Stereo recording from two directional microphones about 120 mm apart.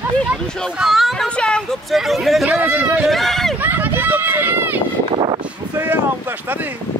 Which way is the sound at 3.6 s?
15° right (ahead or behind).